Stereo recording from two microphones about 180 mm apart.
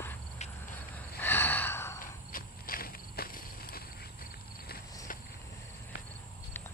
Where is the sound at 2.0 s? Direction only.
50° left (ahead or behind).